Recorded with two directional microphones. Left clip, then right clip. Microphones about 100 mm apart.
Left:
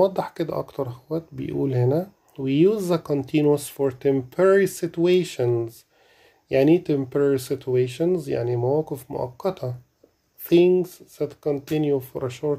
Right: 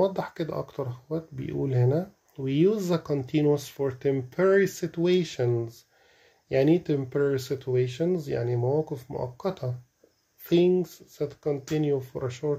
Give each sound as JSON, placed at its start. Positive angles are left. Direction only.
{"t": 0.0, "sound": "speech", "side_deg": 30}